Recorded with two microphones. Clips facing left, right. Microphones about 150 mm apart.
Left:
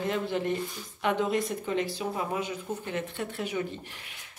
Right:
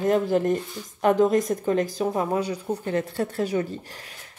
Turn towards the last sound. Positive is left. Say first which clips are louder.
# right 7 dB
turn(degrees=-40)  # may be behind; listen again after turning